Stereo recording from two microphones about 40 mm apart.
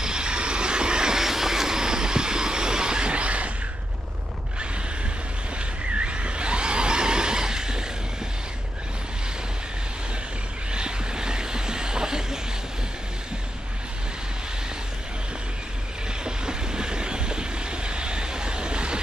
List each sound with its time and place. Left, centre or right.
0.0 s vehicle: right
5.9 s vehicle: right
10.7 s chuckle: centre
16.3 s vehicle: centre